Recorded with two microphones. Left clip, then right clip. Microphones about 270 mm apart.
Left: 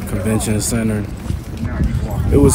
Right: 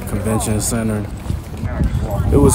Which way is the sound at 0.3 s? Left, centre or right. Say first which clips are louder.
Even; centre.